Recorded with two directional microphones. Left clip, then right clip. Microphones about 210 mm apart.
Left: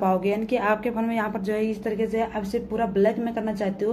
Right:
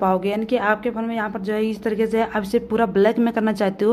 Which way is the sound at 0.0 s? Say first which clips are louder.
Right 3 dB; 15° right (ahead or behind).